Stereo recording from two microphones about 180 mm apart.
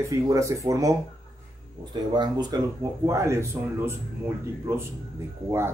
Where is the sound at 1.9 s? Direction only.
25° right (ahead or behind).